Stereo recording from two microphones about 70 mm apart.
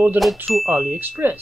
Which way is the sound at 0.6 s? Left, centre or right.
Right.